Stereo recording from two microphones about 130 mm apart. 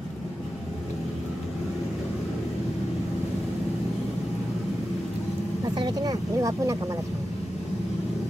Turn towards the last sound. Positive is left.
turn(degrees=-25)  # may be behind; listen again after turning